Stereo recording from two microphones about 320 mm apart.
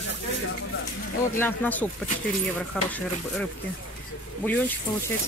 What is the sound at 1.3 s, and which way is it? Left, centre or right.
Speech, centre.